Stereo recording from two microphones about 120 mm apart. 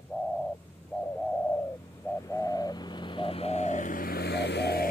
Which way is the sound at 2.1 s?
30° left (ahead or behind).